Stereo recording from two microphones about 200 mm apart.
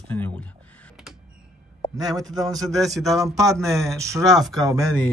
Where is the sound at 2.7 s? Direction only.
Centre (ahead or behind).